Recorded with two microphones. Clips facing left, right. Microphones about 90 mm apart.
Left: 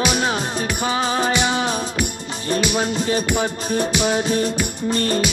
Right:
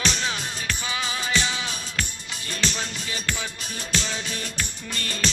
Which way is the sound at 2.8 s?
45° left (ahead or behind).